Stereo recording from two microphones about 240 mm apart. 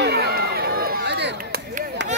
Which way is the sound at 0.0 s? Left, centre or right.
Right.